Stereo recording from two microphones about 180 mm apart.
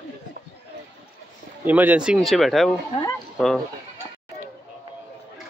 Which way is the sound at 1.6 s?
10° right (ahead or behind).